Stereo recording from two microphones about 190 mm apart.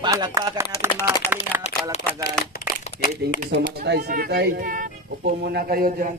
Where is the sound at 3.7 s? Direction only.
55° right (ahead or behind).